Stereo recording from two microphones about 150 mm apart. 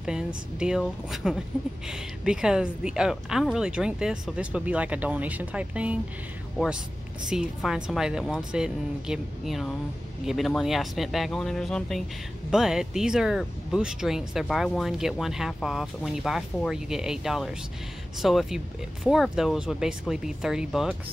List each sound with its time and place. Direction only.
0.6 s speech: 5° right (ahead or behind)
7.2 s speech: 5° right (ahead or behind)